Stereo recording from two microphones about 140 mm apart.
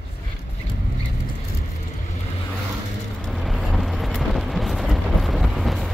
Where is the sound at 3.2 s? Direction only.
Centre (ahead or behind).